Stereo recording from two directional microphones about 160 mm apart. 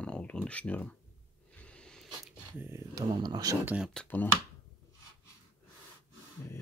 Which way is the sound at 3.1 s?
25° right (ahead or behind).